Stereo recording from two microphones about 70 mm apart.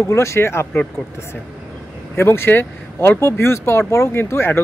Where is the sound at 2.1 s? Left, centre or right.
Left.